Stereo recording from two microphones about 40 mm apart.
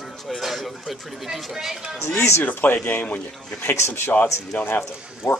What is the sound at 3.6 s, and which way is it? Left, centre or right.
Speech, left.